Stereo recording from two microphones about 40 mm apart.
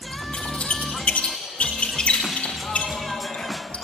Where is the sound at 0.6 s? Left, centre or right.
Left.